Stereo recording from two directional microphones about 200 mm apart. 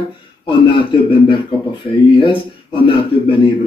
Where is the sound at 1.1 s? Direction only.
25° left (ahead or behind).